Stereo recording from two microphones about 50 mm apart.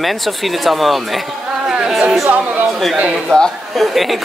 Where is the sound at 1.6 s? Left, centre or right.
Centre.